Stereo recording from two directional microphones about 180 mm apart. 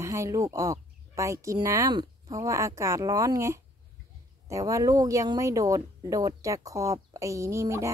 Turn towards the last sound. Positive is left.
turn(degrees=-15)  # may be behind; listen again after turning